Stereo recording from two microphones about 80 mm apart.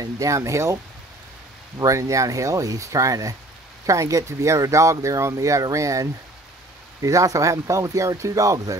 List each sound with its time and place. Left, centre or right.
0.0 s speech: right
1.9 s speech: right